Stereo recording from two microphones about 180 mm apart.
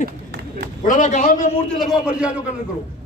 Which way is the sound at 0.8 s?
45° left (ahead or behind).